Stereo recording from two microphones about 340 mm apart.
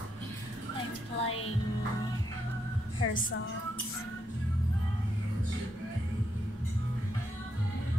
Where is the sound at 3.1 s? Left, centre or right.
Left.